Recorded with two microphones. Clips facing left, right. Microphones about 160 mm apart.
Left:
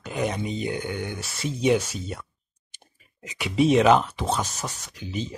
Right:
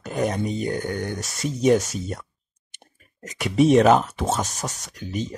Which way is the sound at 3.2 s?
40° right (ahead or behind).